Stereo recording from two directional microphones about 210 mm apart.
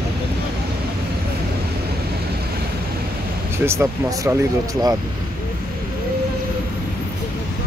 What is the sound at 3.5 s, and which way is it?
Speech, 10° right (ahead or behind).